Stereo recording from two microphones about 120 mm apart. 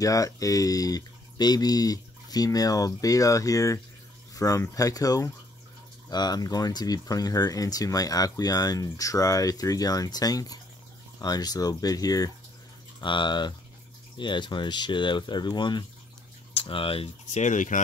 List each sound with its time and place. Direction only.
0.0 s speech: 30° left (ahead or behind); by 17.1 s 50° left (ahead or behind)
17.3 s speech: 85° left